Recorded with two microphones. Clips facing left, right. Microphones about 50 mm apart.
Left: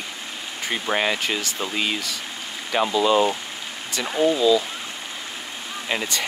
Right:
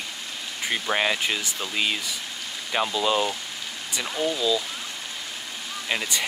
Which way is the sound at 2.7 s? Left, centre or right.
Centre.